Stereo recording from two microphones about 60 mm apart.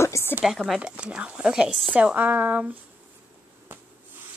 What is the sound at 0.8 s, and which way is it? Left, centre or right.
Speech, centre.